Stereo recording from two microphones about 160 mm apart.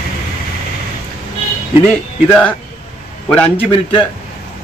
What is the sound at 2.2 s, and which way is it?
Speech, 10° left (ahead or behind).